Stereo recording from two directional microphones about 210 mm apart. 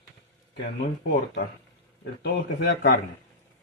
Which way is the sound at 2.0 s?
50° left (ahead or behind).